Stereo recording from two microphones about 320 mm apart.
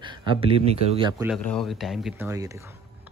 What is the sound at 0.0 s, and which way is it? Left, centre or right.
A man's voice, centre.